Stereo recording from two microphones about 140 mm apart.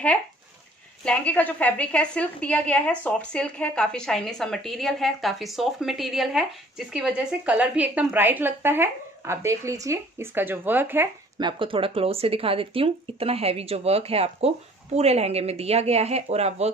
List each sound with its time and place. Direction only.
1.0 s a woman's voice: 10° left (ahead or behind); by 11.1 s 15° right (ahead or behind)
11.3 s speech: 35° right (ahead or behind)